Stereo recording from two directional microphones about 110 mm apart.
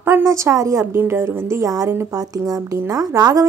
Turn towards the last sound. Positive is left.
turn(degrees=-35)  # may be behind; listen again after turning